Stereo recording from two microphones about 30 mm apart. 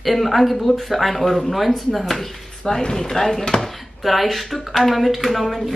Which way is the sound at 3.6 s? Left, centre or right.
Centre.